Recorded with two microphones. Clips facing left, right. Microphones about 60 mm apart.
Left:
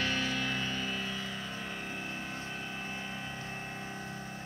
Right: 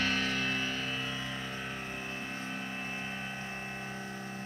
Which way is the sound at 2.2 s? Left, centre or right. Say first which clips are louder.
Right 1 dB; centre.